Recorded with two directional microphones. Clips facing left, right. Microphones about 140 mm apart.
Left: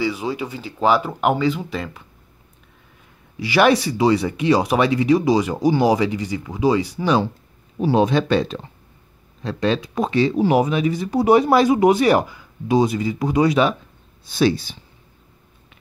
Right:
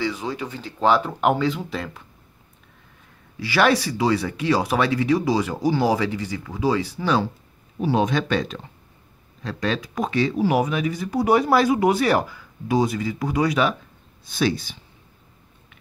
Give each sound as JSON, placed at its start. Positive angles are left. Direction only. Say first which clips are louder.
{"t": 0.0, "sound": "speech", "louder": "left 3 dB", "side_deg": 10}
{"t": 3.3, "sound": "speech", "louder": "left 3 dB", "side_deg": 15}
{"t": 7.8, "sound": "speech", "louder": "left 4 dB", "side_deg": 30}